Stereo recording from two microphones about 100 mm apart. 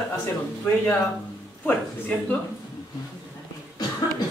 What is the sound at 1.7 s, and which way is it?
Speech, 15° left (ahead or behind).